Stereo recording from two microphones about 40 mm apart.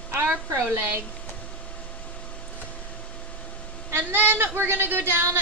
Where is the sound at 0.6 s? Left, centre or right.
Right.